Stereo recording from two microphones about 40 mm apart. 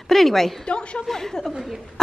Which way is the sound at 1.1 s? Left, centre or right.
Centre.